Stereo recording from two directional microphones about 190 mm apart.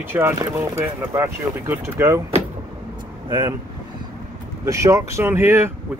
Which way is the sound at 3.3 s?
25° right (ahead or behind).